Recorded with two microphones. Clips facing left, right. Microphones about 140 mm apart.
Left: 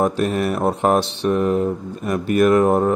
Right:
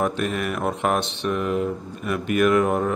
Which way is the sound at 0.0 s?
35° left (ahead or behind).